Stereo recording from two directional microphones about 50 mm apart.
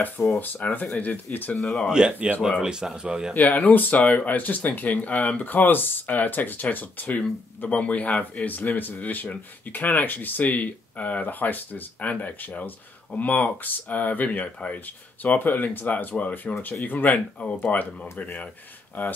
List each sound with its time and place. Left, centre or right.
0.4 s speech: left
1.6 s speech: centre
1.9 s speech: centre
3.3 s speech: left
19.0 s speech: left